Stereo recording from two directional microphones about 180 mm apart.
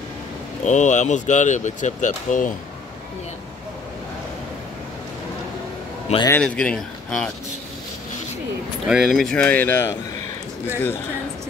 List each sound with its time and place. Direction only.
0.7 s speech: 40° left (ahead or behind)
6.1 s a man's voice: 40° left (ahead or behind)
6.4 s speech: 5° left (ahead or behind)
8.8 s speech: centre (ahead or behind)